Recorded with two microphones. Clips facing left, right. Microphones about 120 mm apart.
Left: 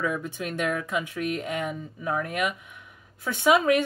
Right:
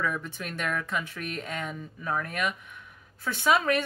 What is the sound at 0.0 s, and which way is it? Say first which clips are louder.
Speech: left 3 dB; 15° left (ahead or behind).